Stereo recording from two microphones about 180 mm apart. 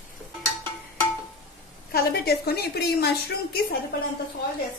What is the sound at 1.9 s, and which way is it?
A woman's voice, 60° left (ahead or behind).